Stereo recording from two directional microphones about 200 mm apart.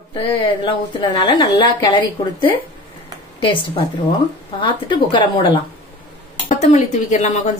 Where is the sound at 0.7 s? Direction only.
25° left (ahead or behind).